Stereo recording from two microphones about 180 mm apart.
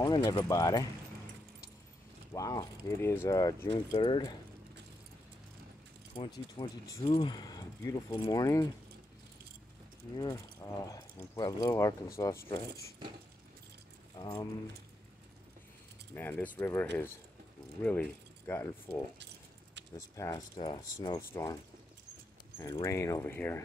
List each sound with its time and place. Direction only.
0.0 s speech: 25° left (ahead or behind)
2.3 s speech: 20° left (ahead or behind)
6.1 s speech: 20° left (ahead or behind)
10.1 s speech: 20° left (ahead or behind)
14.1 s speech: 20° left (ahead or behind)
16.2 s speech: 10° left (ahead or behind)
17.8 s speech: 10° left (ahead or behind)
20.5 s speech: 25° left (ahead or behind)
21.2 s speech: 15° left (ahead or behind)
22.6 s speech: 20° left (ahead or behind)